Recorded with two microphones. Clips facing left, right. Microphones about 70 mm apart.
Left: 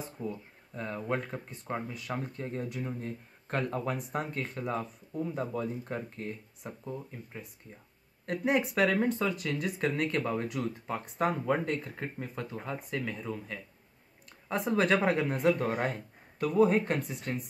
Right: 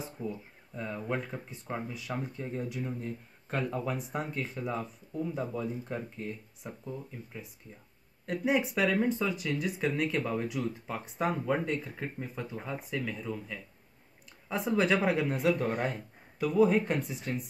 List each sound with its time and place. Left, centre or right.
0.2 s speech: centre
6.8 s speech: left
8.3 s speech: centre